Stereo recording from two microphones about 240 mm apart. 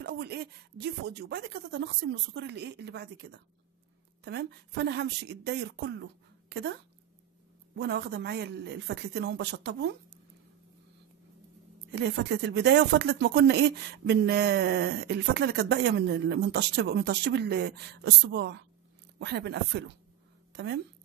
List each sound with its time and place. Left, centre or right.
0.0 s speech: right
11.9 s speech: right